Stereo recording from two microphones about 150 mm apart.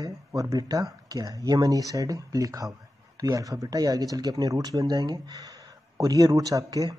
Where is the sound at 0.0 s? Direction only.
20° right (ahead or behind).